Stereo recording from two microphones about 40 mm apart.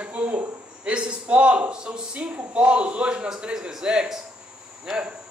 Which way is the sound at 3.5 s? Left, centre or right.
Centre.